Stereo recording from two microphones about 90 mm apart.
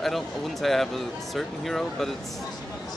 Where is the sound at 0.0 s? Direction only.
Centre (ahead or behind).